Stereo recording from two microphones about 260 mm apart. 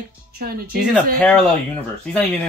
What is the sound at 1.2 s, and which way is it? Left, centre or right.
Speech, centre.